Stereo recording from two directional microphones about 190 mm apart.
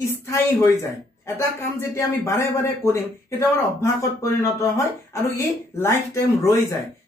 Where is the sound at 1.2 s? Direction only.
15° left (ahead or behind).